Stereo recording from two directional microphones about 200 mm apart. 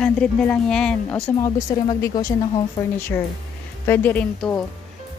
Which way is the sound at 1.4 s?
20° left (ahead or behind).